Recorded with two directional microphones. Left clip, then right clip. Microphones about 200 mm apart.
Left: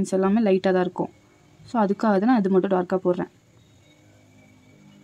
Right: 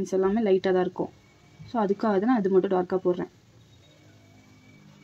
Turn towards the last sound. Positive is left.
turn(degrees=15)  # may be behind; listen again after turning